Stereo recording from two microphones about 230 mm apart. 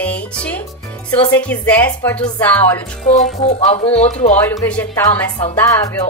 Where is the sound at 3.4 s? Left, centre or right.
Left.